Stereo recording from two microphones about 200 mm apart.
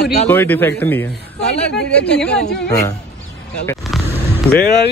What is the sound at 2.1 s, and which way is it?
Speech, 55° left (ahead or behind).